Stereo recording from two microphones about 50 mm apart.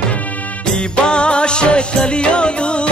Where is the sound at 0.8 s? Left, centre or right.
Centre.